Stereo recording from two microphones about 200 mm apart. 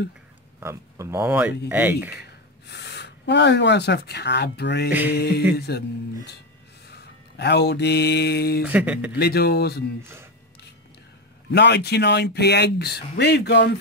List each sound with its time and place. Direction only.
0.6 s speech: 15° right (ahead or behind)
2.1 s speech: 55° left (ahead or behind)
6.9 s mantra: 55° left (ahead or behind)
8.6 s speech: 5° right (ahead or behind)
9.1 s speech: 55° left (ahead or behind)
11.5 s speech: 55° left (ahead or behind)